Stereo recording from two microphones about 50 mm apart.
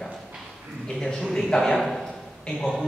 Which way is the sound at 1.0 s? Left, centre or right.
Centre.